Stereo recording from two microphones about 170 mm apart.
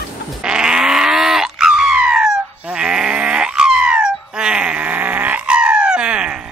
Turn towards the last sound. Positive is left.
turn(degrees=-5)  # may be behind; listen again after turning